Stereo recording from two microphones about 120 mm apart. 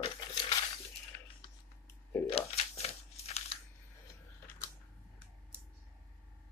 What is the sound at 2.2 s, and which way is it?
Crumpling, 55° left (ahead or behind).